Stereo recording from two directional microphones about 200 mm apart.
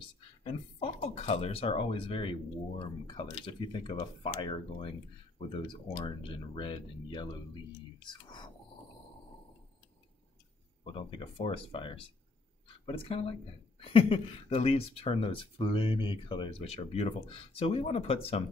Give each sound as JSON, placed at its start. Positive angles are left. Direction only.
{"t": 0.4, "sound": "speech", "side_deg": 30}
{"t": 10.8, "sound": "speech", "side_deg": 25}